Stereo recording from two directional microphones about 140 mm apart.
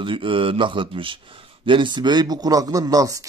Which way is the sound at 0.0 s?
35° right (ahead or behind).